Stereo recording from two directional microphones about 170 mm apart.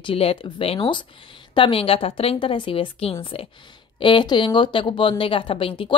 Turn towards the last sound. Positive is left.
turn(degrees=30)  # may be behind; listen again after turning